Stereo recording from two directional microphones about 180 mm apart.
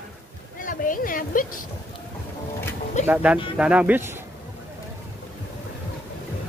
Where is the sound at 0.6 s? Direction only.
50° left (ahead or behind).